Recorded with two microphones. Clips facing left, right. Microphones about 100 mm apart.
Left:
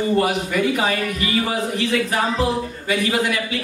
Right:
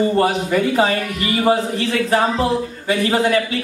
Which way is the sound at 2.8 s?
35° right (ahead or behind).